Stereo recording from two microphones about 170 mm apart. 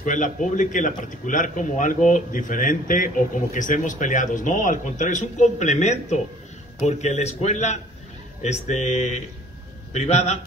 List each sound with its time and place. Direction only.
0.0 s speech: 50° left (ahead or behind)